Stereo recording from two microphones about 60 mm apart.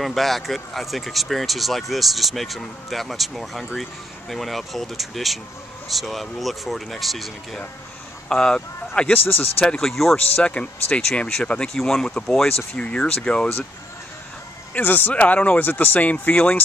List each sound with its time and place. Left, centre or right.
0.0 s speech: centre
8.3 s speech: centre
9.7 s speech: centre
10.1 s speech: centre
14.7 s speech: left